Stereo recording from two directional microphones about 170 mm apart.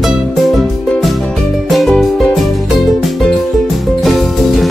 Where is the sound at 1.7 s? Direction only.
Centre (ahead or behind).